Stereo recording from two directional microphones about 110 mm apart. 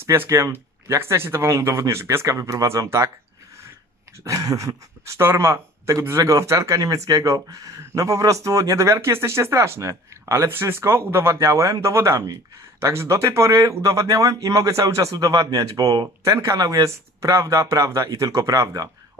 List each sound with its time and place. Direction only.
0.0 s speech: 20° right (ahead or behind)
4.2 s speech: 30° right (ahead or behind)